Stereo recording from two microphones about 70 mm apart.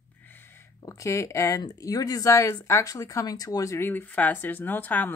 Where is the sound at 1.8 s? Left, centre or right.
Left.